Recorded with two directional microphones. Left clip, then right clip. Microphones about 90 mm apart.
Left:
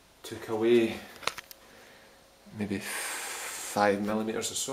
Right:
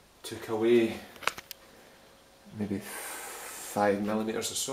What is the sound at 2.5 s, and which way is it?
Speech, 10° right (ahead or behind).